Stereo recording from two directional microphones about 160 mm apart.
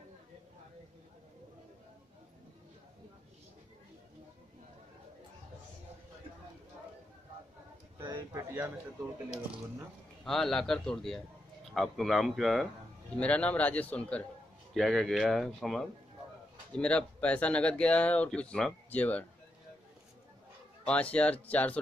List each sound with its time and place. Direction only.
8.1 s a sound: 20° right (ahead or behind)
10.2 s speech: 5° left (ahead or behind)
20.8 s speech: 10° left (ahead or behind)